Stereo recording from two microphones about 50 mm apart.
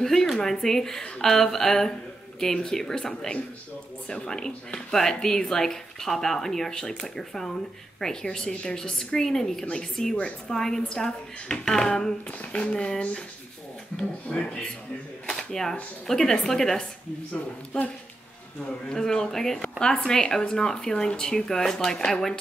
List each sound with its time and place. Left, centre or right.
0.0 s speech: centre
12.3 s a sound: left
12.7 s speech: centre
18.9 s speech: centre